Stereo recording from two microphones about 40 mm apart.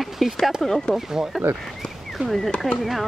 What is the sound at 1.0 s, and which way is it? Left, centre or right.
Speech, centre.